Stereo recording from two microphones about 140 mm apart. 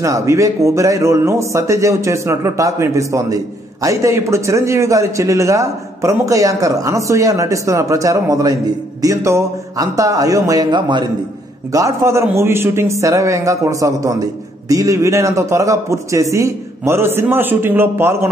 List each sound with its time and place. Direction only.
0.0 s a man's voice: 20° right (ahead or behind)
11.7 s a man's voice: 20° right (ahead or behind)